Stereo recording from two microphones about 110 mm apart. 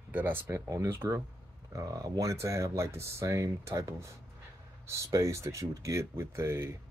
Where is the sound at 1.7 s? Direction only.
35° right (ahead or behind).